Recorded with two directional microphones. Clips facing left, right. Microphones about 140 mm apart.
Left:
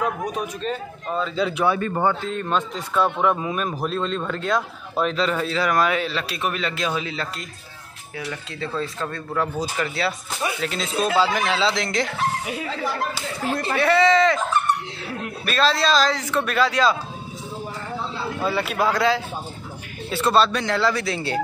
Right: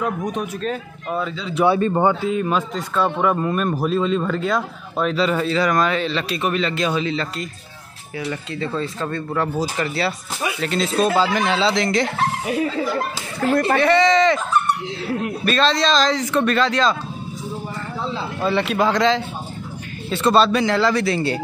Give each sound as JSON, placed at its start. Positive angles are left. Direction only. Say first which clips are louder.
{"t": 0.3, "sound": "speech", "louder": "right 2 dB", "side_deg": 0}
{"t": 1.7, "sound": "speech", "louder": "right 4 dB", "side_deg": -25}
{"t": 2.2, "sound": "speech", "louder": "right 4 dB", "side_deg": -5}
{"t": 13.5, "sound": "speech", "louder": "right 8 dB", "side_deg": -55}
{"t": 13.7, "sound": "speech", "louder": "left 1 dB", "side_deg": 5}
{"t": 15.4, "sound": "speech", "louder": "right 1 dB", "side_deg": 5}
{"t": 18.4, "sound": "speech", "louder": "right 4 dB", "side_deg": 5}